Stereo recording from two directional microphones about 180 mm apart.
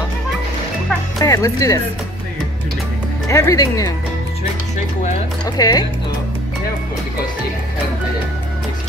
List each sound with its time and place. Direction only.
1.2 s speech: 20° left (ahead or behind)
3.3 s speech: 15° left (ahead or behind)
5.6 s speech: 20° left (ahead or behind)